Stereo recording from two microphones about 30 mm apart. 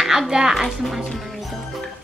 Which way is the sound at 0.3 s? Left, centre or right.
Centre.